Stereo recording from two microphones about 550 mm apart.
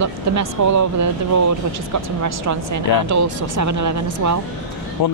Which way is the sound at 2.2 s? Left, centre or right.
Right.